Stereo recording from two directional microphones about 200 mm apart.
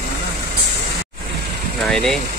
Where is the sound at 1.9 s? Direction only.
5° left (ahead or behind).